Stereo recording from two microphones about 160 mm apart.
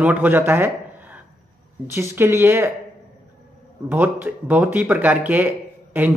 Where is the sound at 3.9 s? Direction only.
10° right (ahead or behind).